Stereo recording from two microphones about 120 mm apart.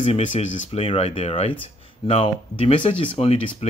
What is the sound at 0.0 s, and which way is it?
Speech, 60° left (ahead or behind).